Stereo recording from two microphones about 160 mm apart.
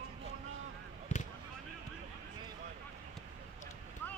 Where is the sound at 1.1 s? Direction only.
45° left (ahead or behind).